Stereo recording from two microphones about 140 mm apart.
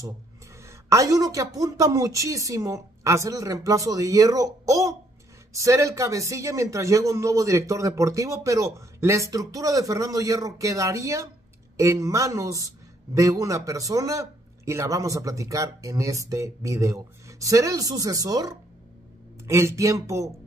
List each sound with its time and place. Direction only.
0.6 s speech: 20° right (ahead or behind)